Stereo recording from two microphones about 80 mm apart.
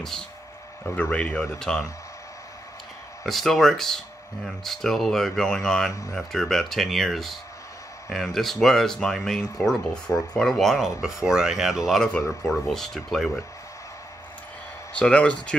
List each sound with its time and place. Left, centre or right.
0.8 s speech: left
1.6 s speech: centre
3.3 s speech: centre
12.0 s speech: centre
15.0 s speech: centre